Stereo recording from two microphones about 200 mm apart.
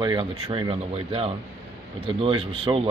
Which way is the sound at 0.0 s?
25° right (ahead or behind).